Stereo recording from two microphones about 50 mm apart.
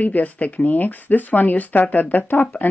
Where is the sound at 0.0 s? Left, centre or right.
Left.